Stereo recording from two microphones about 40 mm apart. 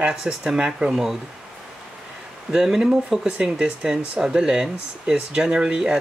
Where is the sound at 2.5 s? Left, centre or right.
Centre.